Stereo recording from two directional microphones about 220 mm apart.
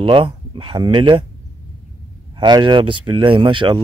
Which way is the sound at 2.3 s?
20° right (ahead or behind).